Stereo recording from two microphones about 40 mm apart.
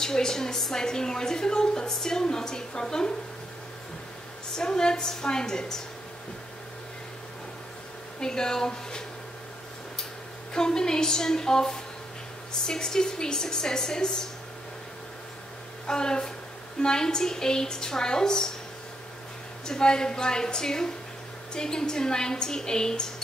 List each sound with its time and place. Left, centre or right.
0.0 s a woman's voice: centre
4.6 s a woman's voice: centre
8.2 s a woman's voice: centre
10.5 s a woman's voice: centre
15.9 s a woman's voice: centre
19.6 s a woman's voice: centre